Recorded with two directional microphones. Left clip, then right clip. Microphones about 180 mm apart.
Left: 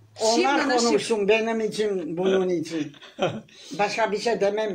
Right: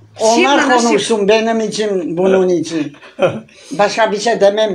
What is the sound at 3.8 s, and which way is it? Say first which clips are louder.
Speech: right 11 dB; 20° right (ahead or behind).